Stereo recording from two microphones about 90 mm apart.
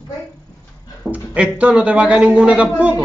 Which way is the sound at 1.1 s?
15° right (ahead or behind).